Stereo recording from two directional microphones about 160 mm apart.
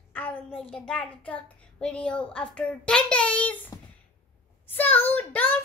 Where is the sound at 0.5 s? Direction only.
5° left (ahead or behind).